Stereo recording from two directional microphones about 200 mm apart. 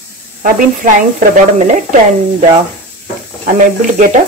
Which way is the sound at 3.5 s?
40° right (ahead or behind).